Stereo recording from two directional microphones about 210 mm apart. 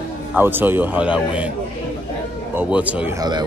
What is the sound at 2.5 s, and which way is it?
Speech, 5° right (ahead or behind).